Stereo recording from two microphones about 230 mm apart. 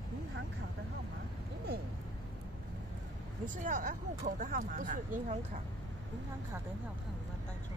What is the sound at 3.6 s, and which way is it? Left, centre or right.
Speech, right.